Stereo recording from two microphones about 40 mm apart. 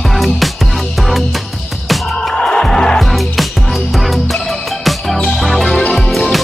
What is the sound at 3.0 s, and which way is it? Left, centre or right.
Music, centre.